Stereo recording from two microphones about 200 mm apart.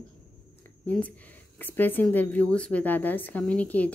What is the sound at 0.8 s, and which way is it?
Speech, 10° left (ahead or behind).